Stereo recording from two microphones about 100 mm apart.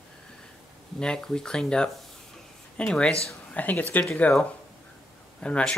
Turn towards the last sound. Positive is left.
turn(degrees=10)  # may be behind; listen again after turning